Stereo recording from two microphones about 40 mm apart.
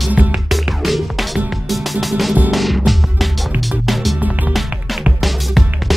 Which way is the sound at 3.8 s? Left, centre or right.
Centre.